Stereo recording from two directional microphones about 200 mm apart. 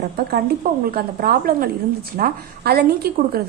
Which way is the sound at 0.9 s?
50° right (ahead or behind).